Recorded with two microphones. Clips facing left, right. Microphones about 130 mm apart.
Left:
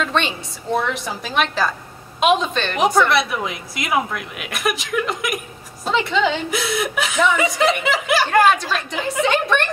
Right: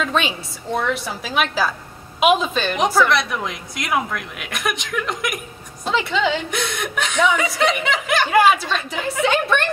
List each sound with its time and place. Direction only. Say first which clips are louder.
0.0 s a woman's voice: even; centre (ahead or behind)